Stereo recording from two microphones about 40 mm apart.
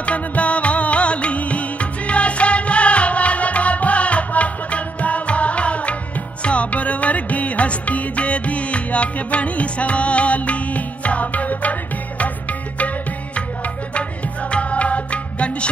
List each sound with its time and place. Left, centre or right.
0.0 s music: left
14.5 s music: left